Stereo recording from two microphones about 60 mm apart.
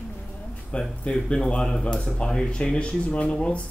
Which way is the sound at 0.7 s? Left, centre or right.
Centre.